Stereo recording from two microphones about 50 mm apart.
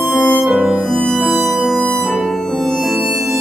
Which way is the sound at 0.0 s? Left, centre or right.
Centre.